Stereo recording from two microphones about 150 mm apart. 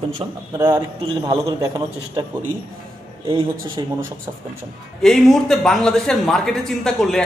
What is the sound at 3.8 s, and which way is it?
Speech, 30° right (ahead or behind).